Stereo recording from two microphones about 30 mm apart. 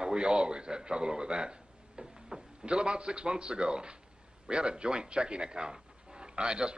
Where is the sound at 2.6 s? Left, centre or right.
Right.